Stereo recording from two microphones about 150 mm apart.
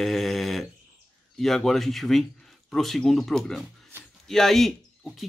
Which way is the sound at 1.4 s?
Centre (ahead or behind).